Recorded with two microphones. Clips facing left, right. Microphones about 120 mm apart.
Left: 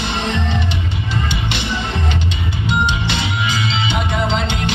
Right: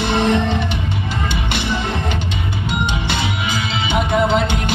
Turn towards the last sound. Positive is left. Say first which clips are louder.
# right 4 dB
turn(degrees=-45)  # may be behind; listen again after turning